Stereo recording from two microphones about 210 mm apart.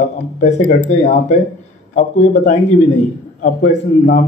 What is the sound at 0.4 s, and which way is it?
A man's voice, 35° left (ahead or behind).